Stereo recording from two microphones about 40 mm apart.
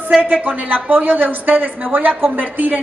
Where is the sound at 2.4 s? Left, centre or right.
Right.